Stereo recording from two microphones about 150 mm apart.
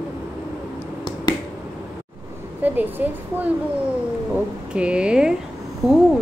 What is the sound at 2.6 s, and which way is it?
Speech, 10° right (ahead or behind).